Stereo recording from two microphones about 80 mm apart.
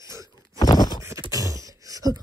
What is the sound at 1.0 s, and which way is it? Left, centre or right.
Beatboxing, right.